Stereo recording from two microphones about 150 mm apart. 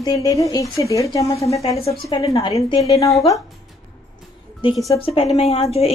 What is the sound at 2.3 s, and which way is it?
Speech, 35° left (ahead or behind).